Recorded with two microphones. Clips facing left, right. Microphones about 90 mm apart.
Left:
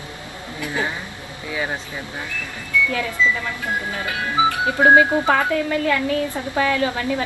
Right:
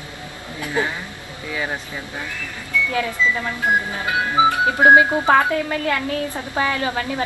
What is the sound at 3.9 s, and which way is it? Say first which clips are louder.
A woman's voice: right 3 dB; 25° right (ahead or behind).